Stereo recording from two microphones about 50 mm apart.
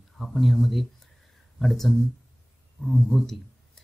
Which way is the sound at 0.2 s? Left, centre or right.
Centre.